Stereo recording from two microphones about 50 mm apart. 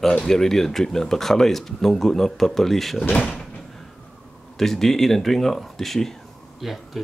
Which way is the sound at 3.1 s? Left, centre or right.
Left.